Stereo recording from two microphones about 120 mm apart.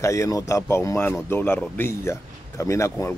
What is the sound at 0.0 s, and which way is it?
A man's voice, 25° left (ahead or behind).